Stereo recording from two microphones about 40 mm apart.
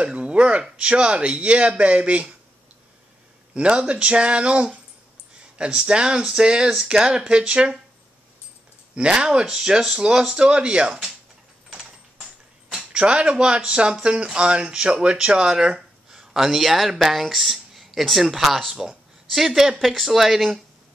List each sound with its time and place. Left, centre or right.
0.0 s speech: right
3.5 s speech: right
8.9 s speech: right
9.5 s speech: centre
11.7 s mechanisms: centre
12.7 s speech: right
16.3 s speech: centre